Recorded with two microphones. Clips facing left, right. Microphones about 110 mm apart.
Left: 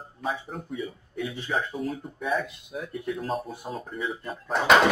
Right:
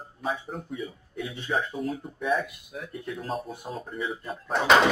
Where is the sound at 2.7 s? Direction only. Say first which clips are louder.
Left 3 dB; 25° left (ahead or behind).